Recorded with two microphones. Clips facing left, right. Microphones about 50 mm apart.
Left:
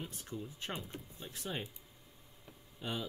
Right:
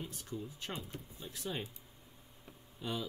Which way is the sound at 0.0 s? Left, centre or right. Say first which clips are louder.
Right 1 dB; left.